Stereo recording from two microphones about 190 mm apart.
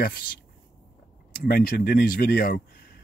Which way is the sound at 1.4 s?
50° left (ahead or behind).